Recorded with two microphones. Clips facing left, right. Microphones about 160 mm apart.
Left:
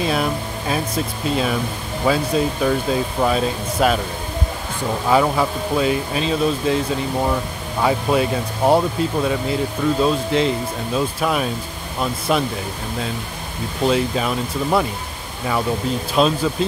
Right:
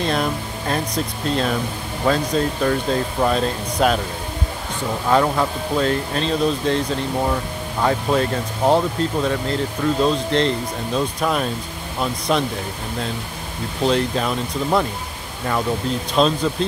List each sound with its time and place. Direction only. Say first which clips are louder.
0.0 s speech: left 1 dB; 5° left (ahead or behind)
5.1 s speech: left 1 dB; 5° left (ahead or behind)
7.8 s speech: left 1 dB; 10° left (ahead or behind)
13.8 s speech: left 1 dB; 5° left (ahead or behind)
16.2 s speech: even; 5° left (ahead or behind)